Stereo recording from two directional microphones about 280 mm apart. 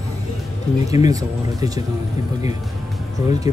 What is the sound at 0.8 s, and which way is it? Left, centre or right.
Speech, centre.